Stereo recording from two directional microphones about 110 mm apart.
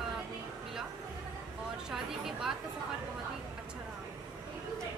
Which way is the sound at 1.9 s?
5° right (ahead or behind).